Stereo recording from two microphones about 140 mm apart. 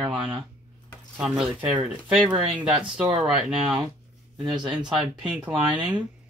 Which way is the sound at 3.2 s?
5° right (ahead or behind).